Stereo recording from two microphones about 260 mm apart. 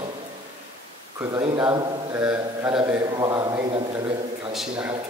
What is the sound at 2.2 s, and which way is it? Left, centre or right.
A man's voice, centre.